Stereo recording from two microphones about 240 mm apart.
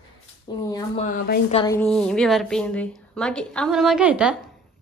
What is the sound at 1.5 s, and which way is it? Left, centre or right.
Speech, centre.